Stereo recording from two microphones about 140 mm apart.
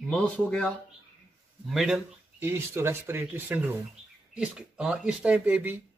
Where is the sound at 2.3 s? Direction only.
20° right (ahead or behind).